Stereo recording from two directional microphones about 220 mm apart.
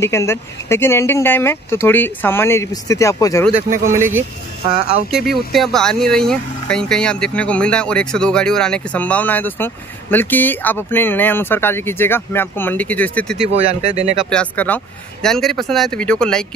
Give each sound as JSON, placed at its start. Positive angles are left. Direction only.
{"t": 0.0, "sound": "speech", "side_deg": 10}
{"t": 3.9, "sound": "speech", "side_deg": -10}
{"t": 5.1, "sound": "speech", "side_deg": 0}
{"t": 13.4, "sound": "speech", "side_deg": -25}
{"t": 14.3, "sound": "speech", "side_deg": 5}